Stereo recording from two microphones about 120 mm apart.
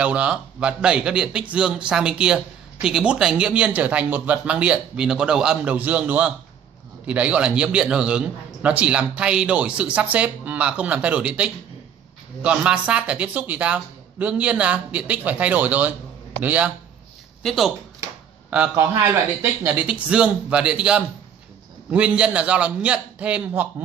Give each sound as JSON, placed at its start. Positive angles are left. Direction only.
{"t": 0.0, "sound": "speech", "side_deg": -10}
{"t": 17.4, "sound": "speech", "side_deg": 0}
{"t": 18.5, "sound": "speech", "side_deg": -15}